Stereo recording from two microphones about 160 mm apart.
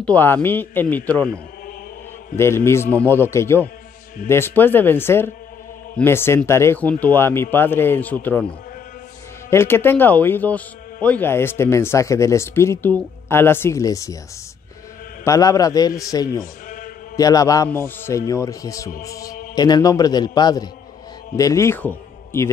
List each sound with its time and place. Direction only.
0.0 s speech: 10° left (ahead or behind)
2.3 s speech: 15° left (ahead or behind)
9.5 s speech: 15° left (ahead or behind)
15.2 s a man's voice: 20° left (ahead or behind)
16.6 s mantra: 60° left (ahead or behind)
17.2 s a man's voice: 20° left (ahead or behind)